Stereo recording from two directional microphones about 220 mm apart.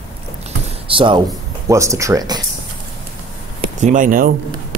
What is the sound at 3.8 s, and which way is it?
Speech, 35° right (ahead or behind).